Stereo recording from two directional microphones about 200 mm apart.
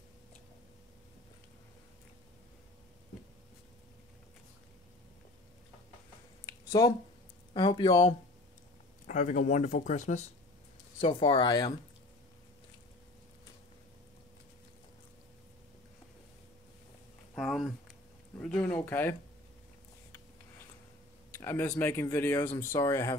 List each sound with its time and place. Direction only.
6.4 s a sound: 20° left (ahead or behind)
7.5 s speech: 25° left (ahead or behind)
9.0 s speech: 40° left (ahead or behind); by 11.7 s 20° left (ahead or behind)
17.4 s a sound: centre (ahead or behind)
18.4 s speech: 5° left (ahead or behind)
21.4 s speech: 15° left (ahead or behind)